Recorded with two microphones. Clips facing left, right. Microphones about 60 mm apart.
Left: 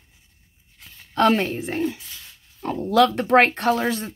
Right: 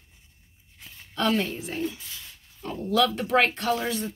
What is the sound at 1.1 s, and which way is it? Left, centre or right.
A woman's voice, left.